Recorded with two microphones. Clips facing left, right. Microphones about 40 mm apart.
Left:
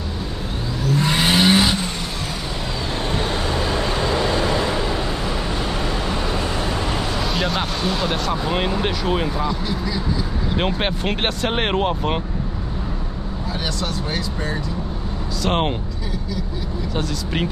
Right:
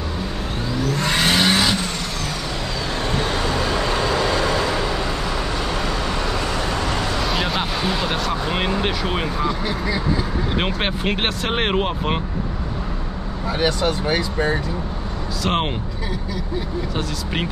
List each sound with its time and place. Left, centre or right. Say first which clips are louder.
0.9 s vehicle: left 2 dB; centre
3.7 s vehicle: even; right
7.2 s speech: even; centre
9.7 s speech: right 1 dB; right
10.7 s speech: even; centre
13.6 s speech: right 7 dB; right
15.4 s speech: left 1 dB; centre
16.9 s speech: left 4 dB; centre